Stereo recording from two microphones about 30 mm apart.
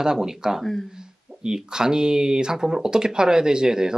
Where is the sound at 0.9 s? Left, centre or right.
Right.